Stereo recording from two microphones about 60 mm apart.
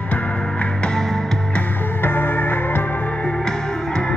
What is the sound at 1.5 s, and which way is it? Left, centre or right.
Music, left.